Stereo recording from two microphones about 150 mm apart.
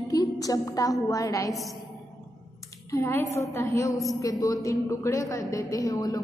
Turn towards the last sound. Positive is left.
turn(degrees=25)  # may be behind; listen again after turning